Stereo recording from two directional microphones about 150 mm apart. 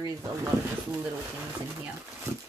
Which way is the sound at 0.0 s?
20° right (ahead or behind).